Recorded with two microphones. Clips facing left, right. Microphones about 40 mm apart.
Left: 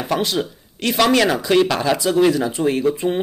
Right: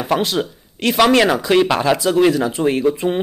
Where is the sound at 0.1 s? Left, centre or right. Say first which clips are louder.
Right 2 dB; centre.